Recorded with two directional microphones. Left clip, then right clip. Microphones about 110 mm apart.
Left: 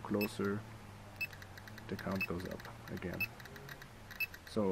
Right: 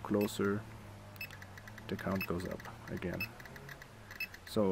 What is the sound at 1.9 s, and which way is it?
Speech, 25° right (ahead or behind).